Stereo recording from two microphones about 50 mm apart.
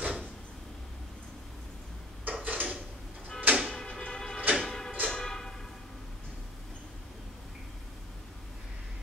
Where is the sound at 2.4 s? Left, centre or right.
Right.